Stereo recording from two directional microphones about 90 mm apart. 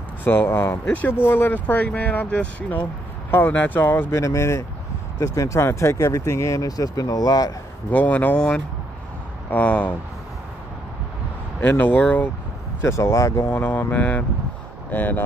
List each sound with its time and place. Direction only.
0.2 s speech: 25° left (ahead or behind)
4.2 s speech: 35° left (ahead or behind)
7.9 s speech: 15° left (ahead or behind)
11.6 s speech: 20° left (ahead or behind)
12.8 s speech: 35° left (ahead or behind)
13.7 s speech: 20° left (ahead or behind)